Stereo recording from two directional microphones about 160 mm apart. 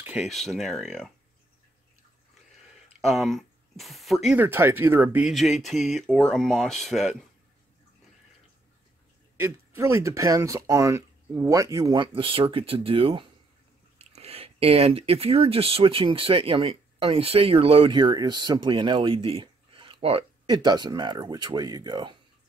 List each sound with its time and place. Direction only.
0.0 s a sound: 10° right (ahead or behind)
0.3 s speech: centre (ahead or behind)
3.0 s speech: centre (ahead or behind)
5.3 s speech: centre (ahead or behind)
9.4 s speech: 15° right (ahead or behind)